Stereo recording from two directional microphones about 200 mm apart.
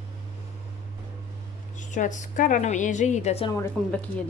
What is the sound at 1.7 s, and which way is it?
A woman's voice, 40° left (ahead or behind).